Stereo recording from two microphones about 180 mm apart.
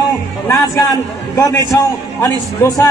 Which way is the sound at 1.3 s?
15° left (ahead or behind).